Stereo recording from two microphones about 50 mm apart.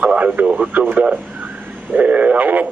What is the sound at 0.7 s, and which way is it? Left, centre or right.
Speech, right.